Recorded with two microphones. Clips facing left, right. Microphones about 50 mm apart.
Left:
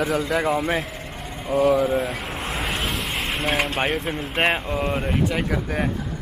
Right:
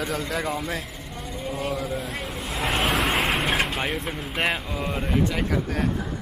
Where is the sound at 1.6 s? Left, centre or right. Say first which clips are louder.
Left 12 dB; centre.